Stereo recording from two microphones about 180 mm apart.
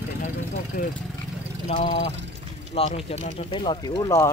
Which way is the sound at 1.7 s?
40° left (ahead or behind).